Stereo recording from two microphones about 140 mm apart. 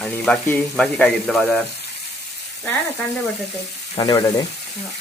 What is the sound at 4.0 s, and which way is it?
Speech, 25° left (ahead or behind).